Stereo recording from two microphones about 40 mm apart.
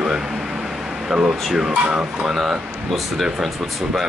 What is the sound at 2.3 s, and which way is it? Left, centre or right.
A man's voice, centre.